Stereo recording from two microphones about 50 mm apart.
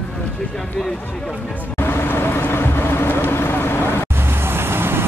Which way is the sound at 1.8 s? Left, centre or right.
Left.